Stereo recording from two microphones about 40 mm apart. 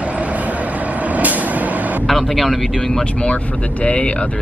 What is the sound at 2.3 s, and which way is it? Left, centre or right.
Speech, centre.